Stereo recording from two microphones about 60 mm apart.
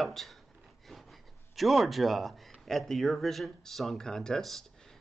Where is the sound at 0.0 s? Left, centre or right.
Centre.